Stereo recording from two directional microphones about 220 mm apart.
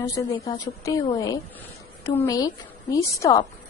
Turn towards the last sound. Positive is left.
turn(degrees=15)  # may be behind; listen again after turning